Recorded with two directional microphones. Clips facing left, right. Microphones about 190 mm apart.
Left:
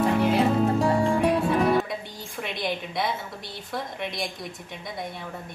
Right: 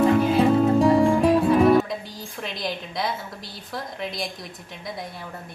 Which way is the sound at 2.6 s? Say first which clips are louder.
Even; centre (ahead or behind).